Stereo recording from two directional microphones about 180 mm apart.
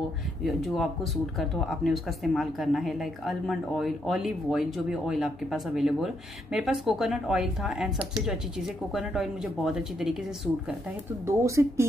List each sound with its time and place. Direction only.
0.4 s speech: centre (ahead or behind)
8.9 s speech: centre (ahead or behind)
11.2 s speech: 15° right (ahead or behind)